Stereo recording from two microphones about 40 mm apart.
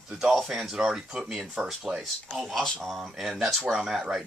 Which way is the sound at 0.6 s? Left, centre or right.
Centre.